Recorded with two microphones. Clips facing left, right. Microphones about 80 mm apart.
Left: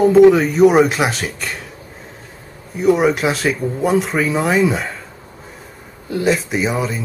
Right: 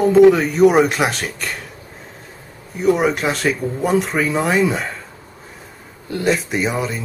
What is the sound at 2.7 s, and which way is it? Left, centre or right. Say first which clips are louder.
Speech: left 2 dB; centre.